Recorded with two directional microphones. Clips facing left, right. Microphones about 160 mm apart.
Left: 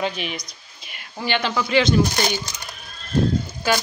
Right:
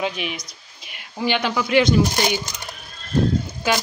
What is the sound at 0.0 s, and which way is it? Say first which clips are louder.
Speech: even; 5° right (ahead or behind).